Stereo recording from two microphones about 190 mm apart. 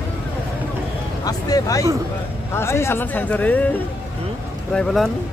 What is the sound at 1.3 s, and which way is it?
A man's voice, 20° left (ahead or behind).